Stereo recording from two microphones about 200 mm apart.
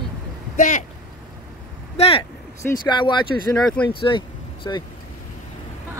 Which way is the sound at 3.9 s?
25° left (ahead or behind).